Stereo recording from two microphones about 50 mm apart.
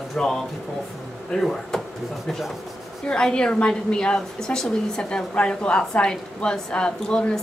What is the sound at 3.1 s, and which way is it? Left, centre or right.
A woman's voice, centre.